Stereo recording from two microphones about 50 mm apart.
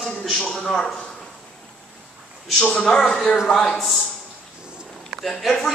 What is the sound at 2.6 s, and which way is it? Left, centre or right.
Speech, left.